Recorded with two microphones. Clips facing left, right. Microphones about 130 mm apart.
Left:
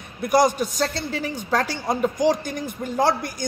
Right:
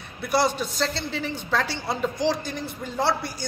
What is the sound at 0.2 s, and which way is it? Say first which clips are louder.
A man's voice: left 5 dB; 45° left (ahead or behind).